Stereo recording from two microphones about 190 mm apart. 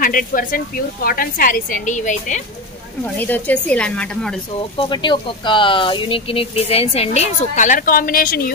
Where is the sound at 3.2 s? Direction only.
10° left (ahead or behind).